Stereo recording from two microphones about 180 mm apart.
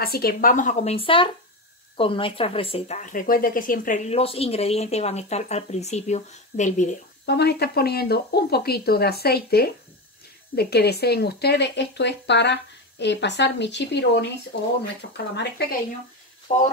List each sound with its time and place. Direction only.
0.0 s speech: 55° left (ahead or behind)
7.2 s speech: 65° left (ahead or behind); by 15.2 s 80° left
16.5 s speech: 45° left (ahead or behind)